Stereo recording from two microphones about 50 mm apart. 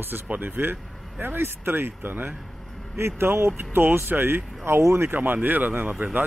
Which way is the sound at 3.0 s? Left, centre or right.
Right.